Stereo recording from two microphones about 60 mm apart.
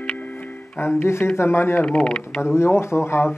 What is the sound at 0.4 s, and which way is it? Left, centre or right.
Speech, left.